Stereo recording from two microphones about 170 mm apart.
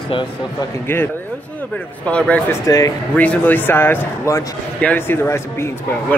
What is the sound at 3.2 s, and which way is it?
Speech, 10° left (ahead or behind).